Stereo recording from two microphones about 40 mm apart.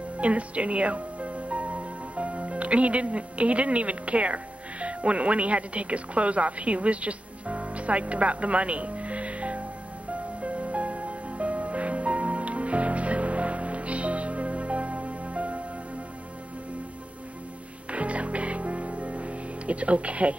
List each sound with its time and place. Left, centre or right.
0.2 s speech: right
10.4 s music: right
17.9 s music: right